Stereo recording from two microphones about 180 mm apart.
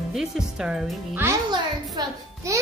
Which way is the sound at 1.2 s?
15° right (ahead or behind).